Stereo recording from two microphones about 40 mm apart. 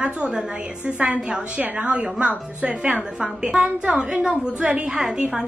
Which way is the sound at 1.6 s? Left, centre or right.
Right.